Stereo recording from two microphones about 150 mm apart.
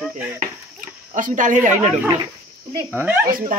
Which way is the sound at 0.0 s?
10° right (ahead or behind).